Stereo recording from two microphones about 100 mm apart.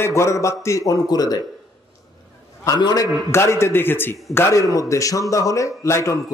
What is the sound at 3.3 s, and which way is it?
A man's voice, 25° left (ahead or behind).